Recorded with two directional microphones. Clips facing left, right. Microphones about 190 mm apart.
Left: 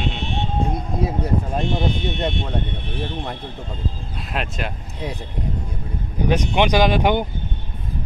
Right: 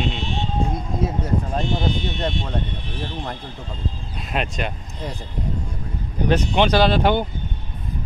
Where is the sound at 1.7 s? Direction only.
60° left (ahead or behind).